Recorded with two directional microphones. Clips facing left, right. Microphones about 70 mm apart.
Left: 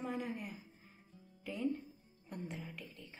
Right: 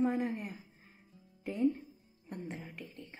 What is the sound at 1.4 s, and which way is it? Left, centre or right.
A woman's voice, right.